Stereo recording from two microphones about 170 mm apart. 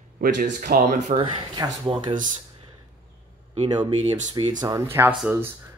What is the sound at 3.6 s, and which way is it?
Speech, 25° right (ahead or behind).